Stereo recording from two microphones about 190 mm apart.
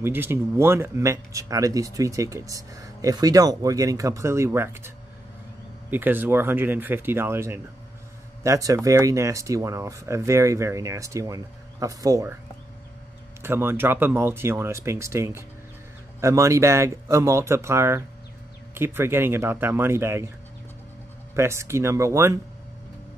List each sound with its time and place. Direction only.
0.0 s speech: 10° right (ahead or behind)
13.4 s speech: 10° right (ahead or behind)
21.4 s speech: 15° right (ahead or behind)